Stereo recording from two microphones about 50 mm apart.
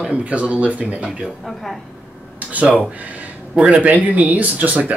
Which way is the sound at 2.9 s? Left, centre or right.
Right.